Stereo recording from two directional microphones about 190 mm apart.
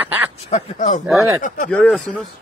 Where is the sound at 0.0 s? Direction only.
10° right (ahead or behind).